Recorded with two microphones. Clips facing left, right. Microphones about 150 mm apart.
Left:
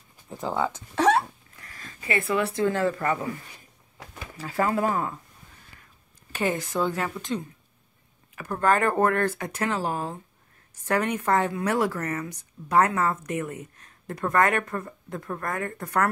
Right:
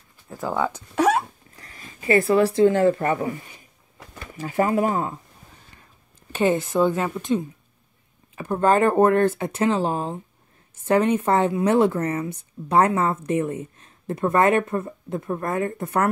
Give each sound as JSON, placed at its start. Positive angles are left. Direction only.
{"t": 0.3, "sound": "speech", "side_deg": 20}
{"t": 0.7, "sound": "speech", "side_deg": -10}
{"t": 1.8, "sound": "a sound", "side_deg": -20}
{"t": 2.0, "sound": "speech", "side_deg": -35}
{"t": 4.4, "sound": "speech", "side_deg": -20}
{"t": 6.3, "sound": "speech", "side_deg": -20}